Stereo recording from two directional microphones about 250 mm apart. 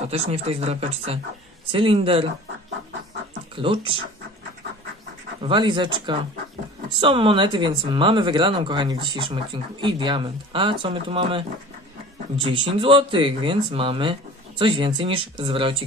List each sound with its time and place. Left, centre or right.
0.1 s speech: right
3.5 s speech: right
5.4 s speech: centre